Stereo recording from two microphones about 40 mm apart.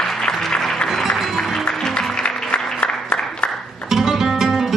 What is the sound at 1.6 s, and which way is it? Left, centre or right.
Music, centre.